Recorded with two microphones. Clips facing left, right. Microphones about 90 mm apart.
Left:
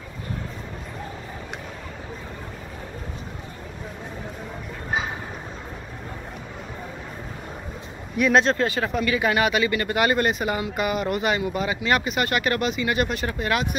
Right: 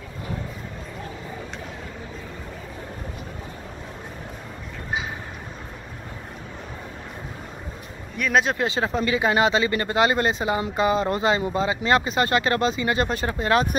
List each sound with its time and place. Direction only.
8.2 s speech: centre (ahead or behind)
8.5 s speech: 20° right (ahead or behind)